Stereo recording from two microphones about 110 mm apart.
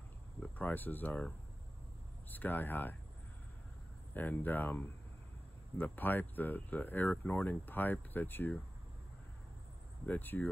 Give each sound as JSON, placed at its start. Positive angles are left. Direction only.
{"t": 0.4, "sound": "speech", "side_deg": 15}
{"t": 4.1, "sound": "speech", "side_deg": 15}
{"t": 10.0, "sound": "speech", "side_deg": 15}